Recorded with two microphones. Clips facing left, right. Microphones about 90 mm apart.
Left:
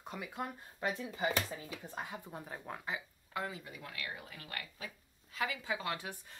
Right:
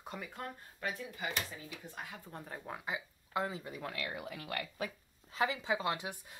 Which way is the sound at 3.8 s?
85° right.